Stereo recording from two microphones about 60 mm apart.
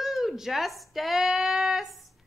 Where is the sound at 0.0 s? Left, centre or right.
Centre.